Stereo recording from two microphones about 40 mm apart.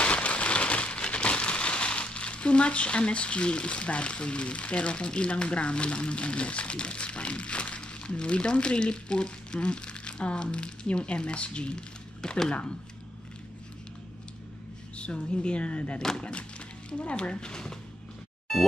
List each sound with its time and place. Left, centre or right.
0.0 s rain on surface: left
15.0 s speech: left